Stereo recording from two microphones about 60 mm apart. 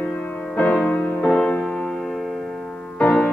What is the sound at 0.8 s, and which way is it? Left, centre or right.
Music, centre.